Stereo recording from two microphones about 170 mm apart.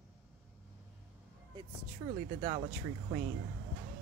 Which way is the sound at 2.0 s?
30° right (ahead or behind).